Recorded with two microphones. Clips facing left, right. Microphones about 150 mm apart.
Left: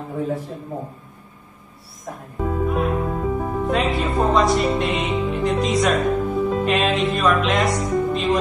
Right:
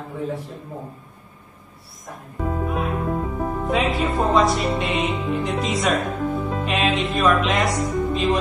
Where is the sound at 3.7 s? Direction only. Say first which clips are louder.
Even; centre (ahead or behind).